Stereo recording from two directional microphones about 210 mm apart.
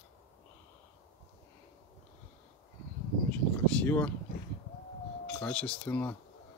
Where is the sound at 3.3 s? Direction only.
5° left (ahead or behind).